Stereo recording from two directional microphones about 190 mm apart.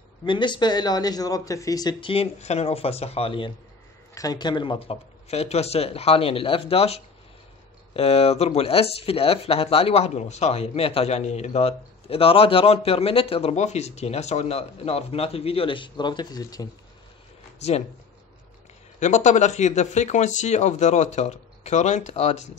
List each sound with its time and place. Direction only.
0.2 s speech: 25° left (ahead or behind)
17.6 s speech: 35° left (ahead or behind)
18.9 s speech: 40° left (ahead or behind)